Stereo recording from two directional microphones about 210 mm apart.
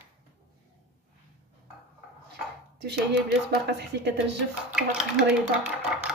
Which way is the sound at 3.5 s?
55° right (ahead or behind).